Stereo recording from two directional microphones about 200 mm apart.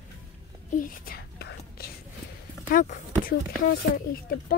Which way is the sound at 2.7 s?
40° left (ahead or behind).